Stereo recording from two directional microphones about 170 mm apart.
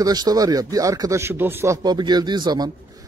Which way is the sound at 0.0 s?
20° right (ahead or behind).